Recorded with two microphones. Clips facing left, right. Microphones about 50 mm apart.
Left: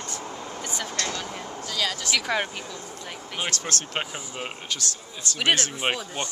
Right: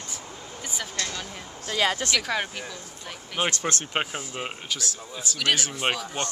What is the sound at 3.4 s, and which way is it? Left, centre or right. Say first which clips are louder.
Speech: right 3 dB; right.